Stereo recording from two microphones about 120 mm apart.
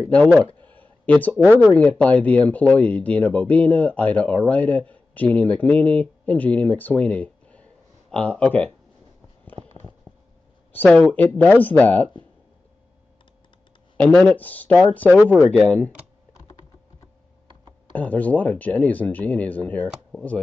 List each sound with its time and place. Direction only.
0.6 s a sound: 15° left (ahead or behind)
1.3 s speech: 10° right (ahead or behind)
1.7 s speech: 10° left (ahead or behind)
9.6 s a sound: 60° right (ahead or behind)
10.7 s speech: 15° left (ahead or behind)
13.9 s speech: 10° left (ahead or behind)
17.9 s speech: 15° left (ahead or behind)
19.9 s speech: 5° right (ahead or behind)